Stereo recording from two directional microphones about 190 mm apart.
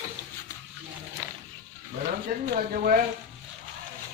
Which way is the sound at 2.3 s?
50° right (ahead or behind).